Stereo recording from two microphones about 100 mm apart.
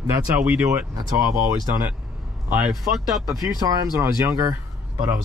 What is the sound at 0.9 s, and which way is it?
Speech, 35° right (ahead or behind).